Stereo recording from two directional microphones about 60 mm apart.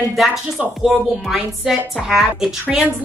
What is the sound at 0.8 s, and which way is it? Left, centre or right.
A woman's voice, centre.